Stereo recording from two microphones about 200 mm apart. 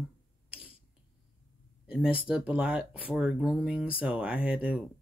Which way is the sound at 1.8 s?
5° right (ahead or behind).